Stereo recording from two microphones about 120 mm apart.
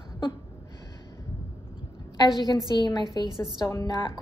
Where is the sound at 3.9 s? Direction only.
35° left (ahead or behind).